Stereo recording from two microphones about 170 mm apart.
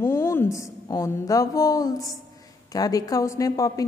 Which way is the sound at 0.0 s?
15° left (ahead or behind).